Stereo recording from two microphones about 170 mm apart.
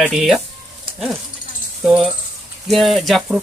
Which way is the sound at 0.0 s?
Centre (ahead or behind).